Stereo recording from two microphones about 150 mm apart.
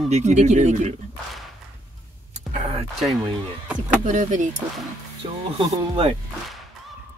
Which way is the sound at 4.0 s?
55° right (ahead or behind).